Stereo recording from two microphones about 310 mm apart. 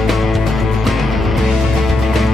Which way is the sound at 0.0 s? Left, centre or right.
Centre.